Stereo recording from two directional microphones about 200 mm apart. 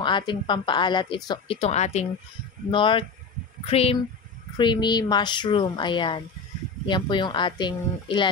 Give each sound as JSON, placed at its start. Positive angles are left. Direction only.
{"t": 0.0, "sound": "speech", "side_deg": 25}